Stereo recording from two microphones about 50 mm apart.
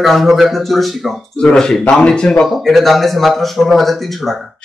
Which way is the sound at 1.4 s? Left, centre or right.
Centre.